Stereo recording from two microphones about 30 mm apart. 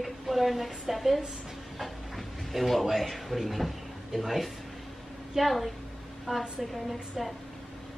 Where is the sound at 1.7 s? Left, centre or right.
Centre.